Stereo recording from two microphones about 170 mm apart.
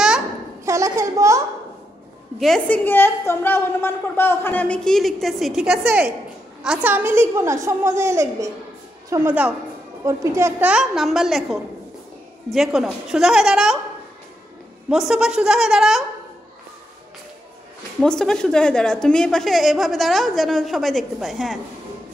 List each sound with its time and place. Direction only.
0.7 s a sound: 20° right (ahead or behind)
2.3 s a woman's voice: centre (ahead or behind); by 10.7 s 15° right (ahead or behind)
10.7 s a woman's voice: centre (ahead or behind)
14.9 s a woman's voice: 5° right (ahead or behind)
18.0 s a woman's voice: 5° left (ahead or behind)